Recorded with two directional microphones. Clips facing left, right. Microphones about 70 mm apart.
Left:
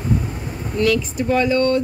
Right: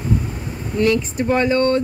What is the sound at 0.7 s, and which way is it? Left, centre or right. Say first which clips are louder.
Speech: right 1 dB; right.